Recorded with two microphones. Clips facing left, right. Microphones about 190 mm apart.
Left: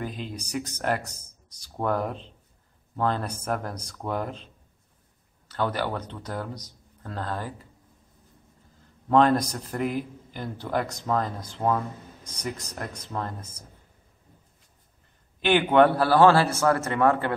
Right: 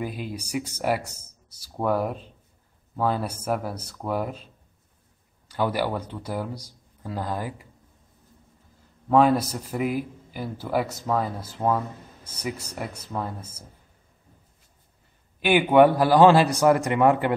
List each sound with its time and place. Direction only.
0.0 s a man's voice: 10° right (ahead or behind)
5.5 s a man's voice: 10° right (ahead or behind)
9.1 s a man's voice: 5° right (ahead or behind)
15.4 s a man's voice: 10° right (ahead or behind)